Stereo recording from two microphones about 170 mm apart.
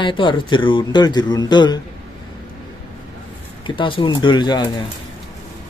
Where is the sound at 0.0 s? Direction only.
30° left (ahead or behind).